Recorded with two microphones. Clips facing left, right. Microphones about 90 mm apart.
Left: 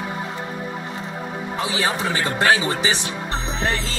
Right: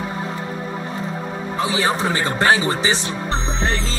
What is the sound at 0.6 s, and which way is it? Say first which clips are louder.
Music: right 3 dB; 10° left (ahead or behind).